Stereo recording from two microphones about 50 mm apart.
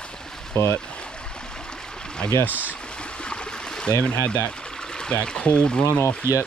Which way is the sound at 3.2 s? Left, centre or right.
Centre.